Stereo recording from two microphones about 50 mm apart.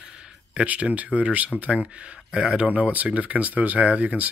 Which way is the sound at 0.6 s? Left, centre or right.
Right.